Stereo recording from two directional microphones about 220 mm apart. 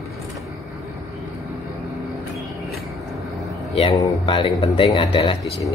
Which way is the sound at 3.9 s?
25° left (ahead or behind).